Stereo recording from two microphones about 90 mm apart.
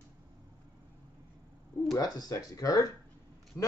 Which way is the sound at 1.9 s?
45° left (ahead or behind).